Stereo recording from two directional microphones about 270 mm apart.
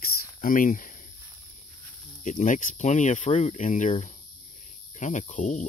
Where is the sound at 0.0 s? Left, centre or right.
Left.